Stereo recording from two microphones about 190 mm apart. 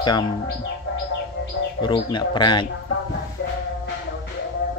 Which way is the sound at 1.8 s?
25° left (ahead or behind).